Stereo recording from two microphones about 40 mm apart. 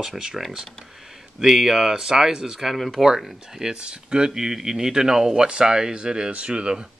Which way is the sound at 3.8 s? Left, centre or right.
Right.